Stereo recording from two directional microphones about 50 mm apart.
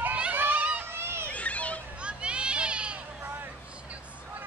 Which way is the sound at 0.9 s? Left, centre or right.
Right.